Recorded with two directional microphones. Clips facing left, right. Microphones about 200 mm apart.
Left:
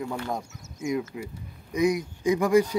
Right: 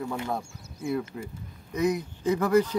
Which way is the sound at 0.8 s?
10° left (ahead or behind).